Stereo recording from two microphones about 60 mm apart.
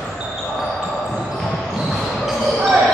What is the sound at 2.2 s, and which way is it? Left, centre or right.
Basketball bounce, centre.